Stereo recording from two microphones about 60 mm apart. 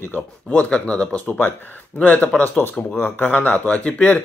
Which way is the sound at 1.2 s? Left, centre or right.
Left.